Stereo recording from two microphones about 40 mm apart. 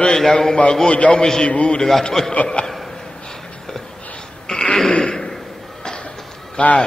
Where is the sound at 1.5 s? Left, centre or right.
Left.